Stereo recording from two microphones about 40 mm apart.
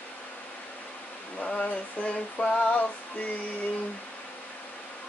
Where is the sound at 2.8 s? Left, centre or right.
Left.